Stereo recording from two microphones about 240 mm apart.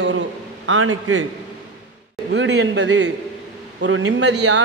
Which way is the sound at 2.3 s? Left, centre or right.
Right.